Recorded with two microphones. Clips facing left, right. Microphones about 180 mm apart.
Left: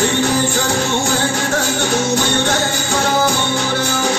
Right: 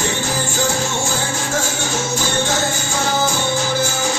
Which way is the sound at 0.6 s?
65° left (ahead or behind).